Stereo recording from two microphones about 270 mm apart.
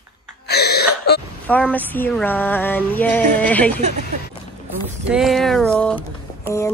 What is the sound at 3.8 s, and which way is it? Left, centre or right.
Speech, right.